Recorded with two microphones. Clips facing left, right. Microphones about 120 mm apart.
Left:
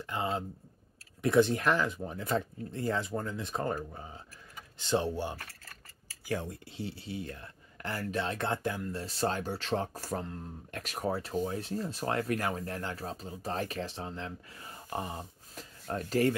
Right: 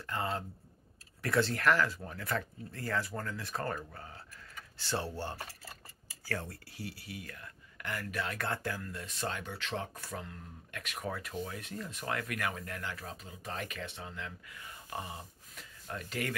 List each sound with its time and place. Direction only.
0.0 s speech: 20° left (ahead or behind)
5.4 s keys jangling: 20° right (ahead or behind)
6.2 s speech: 15° left (ahead or behind)
9.0 s speech: 35° left (ahead or behind)